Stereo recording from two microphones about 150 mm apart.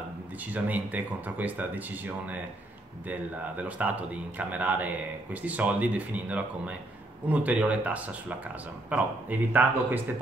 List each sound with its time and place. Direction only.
0.5 s a man's voice: 10° right (ahead or behind)